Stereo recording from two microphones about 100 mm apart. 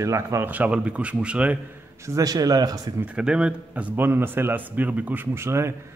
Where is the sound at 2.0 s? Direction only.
35° right (ahead or behind).